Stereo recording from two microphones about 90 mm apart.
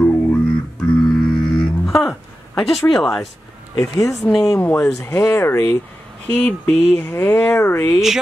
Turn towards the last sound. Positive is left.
turn(degrees=25)  # may be behind; listen again after turning